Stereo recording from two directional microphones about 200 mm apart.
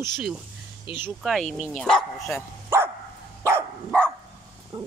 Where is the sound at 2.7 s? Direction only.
10° right (ahead or behind).